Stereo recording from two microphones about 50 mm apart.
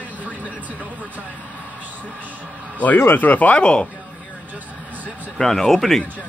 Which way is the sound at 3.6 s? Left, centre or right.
Left.